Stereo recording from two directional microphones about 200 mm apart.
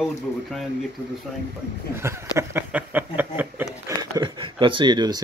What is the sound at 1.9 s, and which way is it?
Speech, 10° right (ahead or behind).